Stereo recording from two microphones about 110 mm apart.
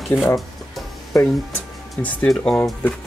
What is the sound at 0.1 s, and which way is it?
Speech, 25° left (ahead or behind).